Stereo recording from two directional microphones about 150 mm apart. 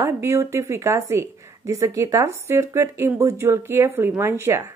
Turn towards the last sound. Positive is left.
turn(degrees=-15)  # may be behind; listen again after turning